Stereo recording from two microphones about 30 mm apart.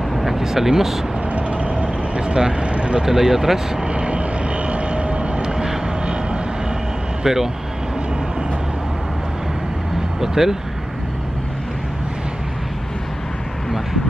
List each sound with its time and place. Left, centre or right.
0.1 s vehicle: centre
0.4 s speech: centre
1.3 s vehicle: right
2.1 s speech: right
2.6 s vehicle: right
3.1 s speech: centre
3.8 s vehicle: right
5.4 s vehicle: right
7.2 s speech: centre
10.2 s speech: centre